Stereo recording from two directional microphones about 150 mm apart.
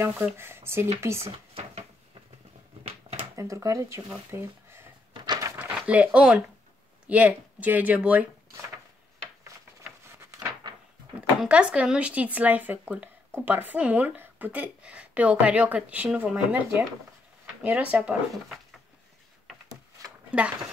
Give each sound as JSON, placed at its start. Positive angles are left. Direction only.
{"t": 0.0, "sound": "speech", "side_deg": -15}
{"t": 3.3, "sound": "speech", "side_deg": -20}
{"t": 5.1, "sound": "a sound", "side_deg": -30}
{"t": 5.6, "sound": "speech", "side_deg": -10}
{"t": 11.4, "sound": "speech", "side_deg": -10}
{"t": 20.2, "sound": "speech", "side_deg": -10}